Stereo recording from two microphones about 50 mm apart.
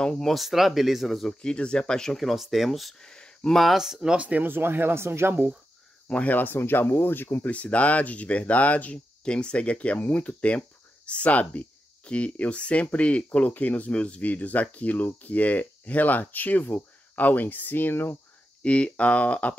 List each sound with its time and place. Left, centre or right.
0.0 s speech: centre
0.3 s speech: centre
1.4 s speech: centre
2.1 s speech: centre
3.0 s speech: centre
3.7 s speech: centre
4.2 s speech: right
4.5 s speech: right
6.0 s speech: left
6.3 s speech: left
7.4 s speech: left
18.6 s speech: left